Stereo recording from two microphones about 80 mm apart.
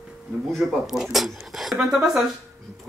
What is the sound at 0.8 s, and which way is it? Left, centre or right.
Speech, centre.